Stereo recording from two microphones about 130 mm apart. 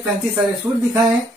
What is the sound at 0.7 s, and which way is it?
Speech, 15° right (ahead or behind).